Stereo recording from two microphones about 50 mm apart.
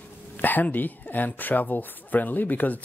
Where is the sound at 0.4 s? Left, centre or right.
Left.